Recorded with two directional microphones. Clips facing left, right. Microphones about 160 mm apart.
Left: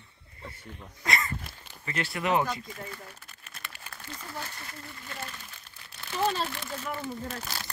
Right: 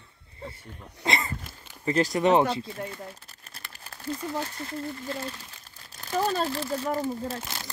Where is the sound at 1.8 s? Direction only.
35° right (ahead or behind).